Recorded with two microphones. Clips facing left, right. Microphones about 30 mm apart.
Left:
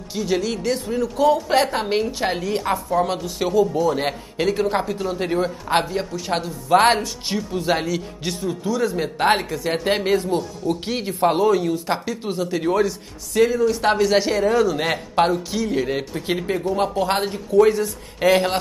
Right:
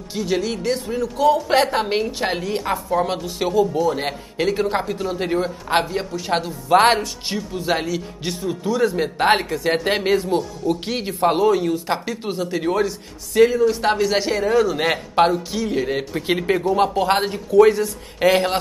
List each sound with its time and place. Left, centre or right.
0.1 s speech: centre
8.6 s speech: centre
10.6 s speech: centre
13.8 s a man's voice: centre; by 18.4 s right